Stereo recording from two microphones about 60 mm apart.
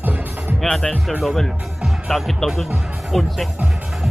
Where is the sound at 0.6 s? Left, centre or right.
Centre.